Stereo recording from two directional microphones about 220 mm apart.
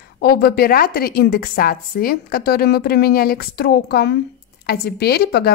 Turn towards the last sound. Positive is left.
turn(degrees=45)  # may be behind; listen again after turning